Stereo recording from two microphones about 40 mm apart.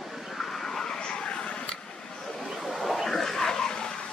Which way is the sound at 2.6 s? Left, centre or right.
Centre.